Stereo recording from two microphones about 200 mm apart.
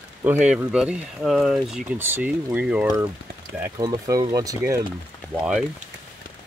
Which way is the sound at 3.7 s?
20° right (ahead or behind).